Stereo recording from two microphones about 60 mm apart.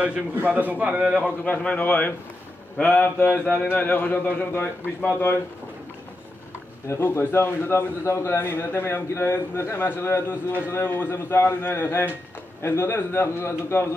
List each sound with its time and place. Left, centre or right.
0.4 s a man's voice: right
0.8 s a man's voice: centre
1.4 s a man's voice: left
6.9 s a man's voice: left